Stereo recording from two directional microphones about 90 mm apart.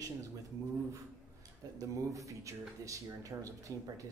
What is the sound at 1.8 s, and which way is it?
Speech, 40° right (ahead or behind).